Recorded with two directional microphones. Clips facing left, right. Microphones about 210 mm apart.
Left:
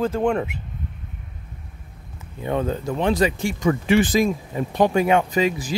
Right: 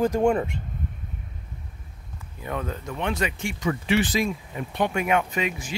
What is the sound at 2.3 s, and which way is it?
Speech, 30° left (ahead or behind).